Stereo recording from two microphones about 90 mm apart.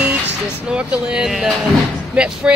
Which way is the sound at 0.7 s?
10° right (ahead or behind).